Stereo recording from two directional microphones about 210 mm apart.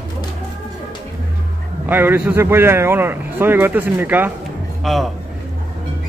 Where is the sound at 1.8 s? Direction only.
10° right (ahead or behind).